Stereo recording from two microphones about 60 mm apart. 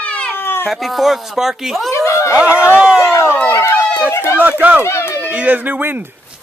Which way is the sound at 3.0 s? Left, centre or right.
Left.